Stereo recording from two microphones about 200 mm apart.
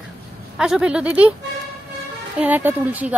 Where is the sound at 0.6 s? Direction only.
5° right (ahead or behind).